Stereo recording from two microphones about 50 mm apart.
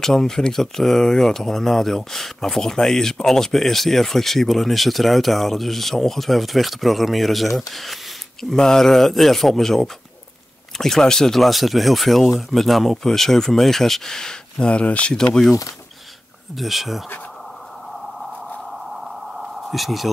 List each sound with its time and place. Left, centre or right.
0.0 s speech: centre
14.7 s speech: left
15.1 s speech: centre
16.5 s speech: centre
19.3 s a sound: centre
19.6 s speech: centre